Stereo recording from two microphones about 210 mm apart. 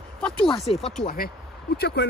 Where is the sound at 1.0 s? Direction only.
45° left (ahead or behind).